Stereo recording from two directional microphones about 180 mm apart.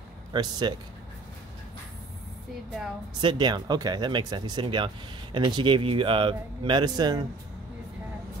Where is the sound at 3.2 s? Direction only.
25° right (ahead or behind).